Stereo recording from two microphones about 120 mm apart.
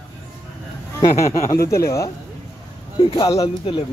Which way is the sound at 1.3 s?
25° left (ahead or behind).